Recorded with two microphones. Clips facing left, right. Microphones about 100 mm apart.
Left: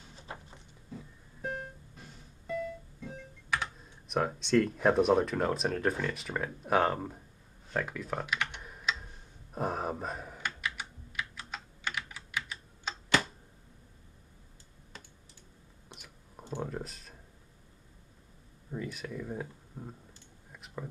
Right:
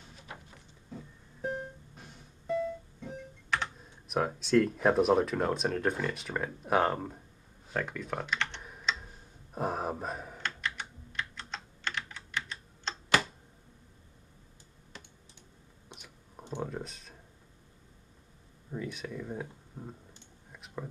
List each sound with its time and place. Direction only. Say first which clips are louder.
1.4 s music: right 2 dB; centre (ahead or behind)
2.4 s music: right 4 dB; 25° right (ahead or behind)
4.1 s speech: right 1 dB; centre (ahead or behind)
8.6 s a sound: even; centre (ahead or behind)
10.4 s typing: even; 10° left (ahead or behind)
16.0 s clicking: even; 5° left (ahead or behind)
16.6 s speech: even; centre (ahead or behind)
18.7 s speech: even; centre (ahead or behind)
20.5 s a sound: right 1 dB; centre (ahead or behind)